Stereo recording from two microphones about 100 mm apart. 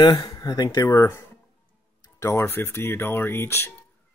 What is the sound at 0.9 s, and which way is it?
Speech, 25° left (ahead or behind).